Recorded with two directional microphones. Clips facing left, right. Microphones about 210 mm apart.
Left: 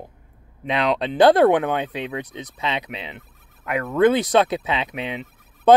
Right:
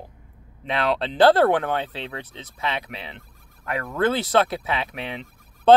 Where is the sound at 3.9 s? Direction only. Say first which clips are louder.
Left 5 dB; 15° left (ahead or behind).